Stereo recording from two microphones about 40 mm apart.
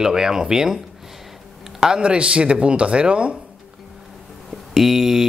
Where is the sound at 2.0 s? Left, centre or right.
Right.